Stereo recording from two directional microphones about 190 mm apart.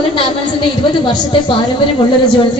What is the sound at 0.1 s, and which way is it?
A woman's voice, 25° left (ahead or behind).